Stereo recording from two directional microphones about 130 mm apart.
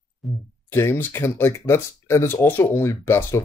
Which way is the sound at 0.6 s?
20° left (ahead or behind).